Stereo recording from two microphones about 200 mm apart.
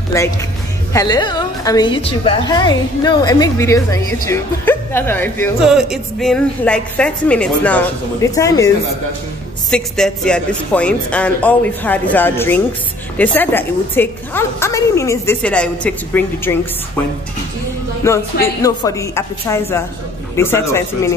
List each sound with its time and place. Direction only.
0.1 s a woman's voice: 15° left (ahead or behind)
5.6 s a woman's voice: 5° right (ahead or behind); by 8.6 s 15° left (ahead or behind)
9.7 s a woman's voice: 5° left (ahead or behind)
18.0 s a woman's voice: 15° left (ahead or behind)